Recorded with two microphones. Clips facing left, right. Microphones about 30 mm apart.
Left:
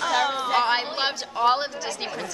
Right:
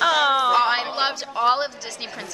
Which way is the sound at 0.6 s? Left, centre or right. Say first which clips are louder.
Right 3 dB; centre.